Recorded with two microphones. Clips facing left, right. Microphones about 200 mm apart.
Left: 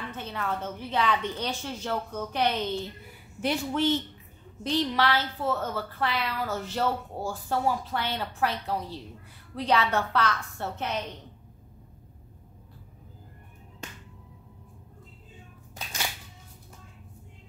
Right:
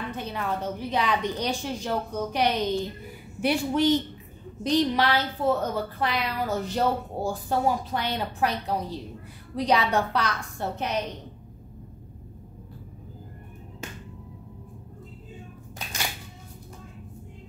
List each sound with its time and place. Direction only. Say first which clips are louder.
0.1 s a woman's voice: right 1 dB; 15° right (ahead or behind)